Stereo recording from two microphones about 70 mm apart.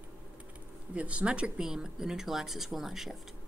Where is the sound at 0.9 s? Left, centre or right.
Centre.